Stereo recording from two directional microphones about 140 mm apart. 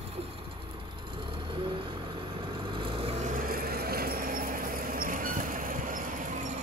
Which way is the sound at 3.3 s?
90° right.